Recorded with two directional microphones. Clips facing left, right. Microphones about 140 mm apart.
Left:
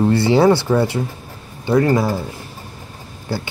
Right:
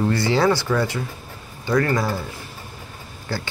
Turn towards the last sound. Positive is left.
turn(degrees=15)  # may be behind; listen again after turning